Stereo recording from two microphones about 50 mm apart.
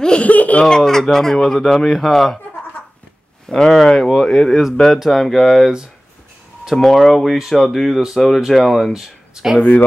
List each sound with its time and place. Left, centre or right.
0.2 s speech: left
0.7 s speech: centre
3.4 s speech: centre